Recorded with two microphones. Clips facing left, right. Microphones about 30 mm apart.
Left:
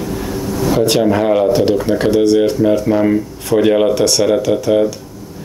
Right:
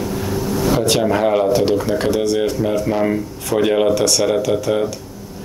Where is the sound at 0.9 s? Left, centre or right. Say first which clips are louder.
Left 3 dB; centre.